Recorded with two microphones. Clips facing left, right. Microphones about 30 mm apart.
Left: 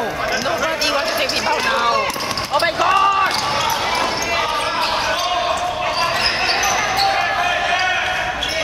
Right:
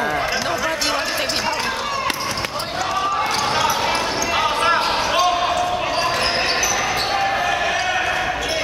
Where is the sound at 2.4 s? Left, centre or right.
Left.